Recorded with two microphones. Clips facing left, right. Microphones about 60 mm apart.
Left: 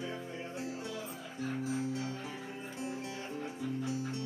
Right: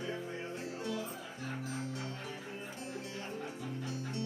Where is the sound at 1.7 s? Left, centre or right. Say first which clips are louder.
Left 5 dB; centre.